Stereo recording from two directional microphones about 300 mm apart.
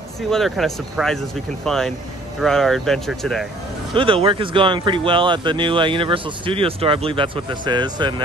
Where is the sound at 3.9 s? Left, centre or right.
Centre.